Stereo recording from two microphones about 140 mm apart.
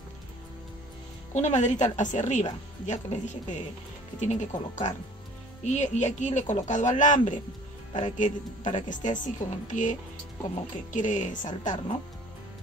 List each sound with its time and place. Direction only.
1.3 s a woman's voice: 55° left (ahead or behind)